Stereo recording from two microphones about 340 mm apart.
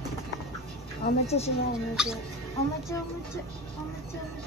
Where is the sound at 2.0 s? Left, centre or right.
Centre.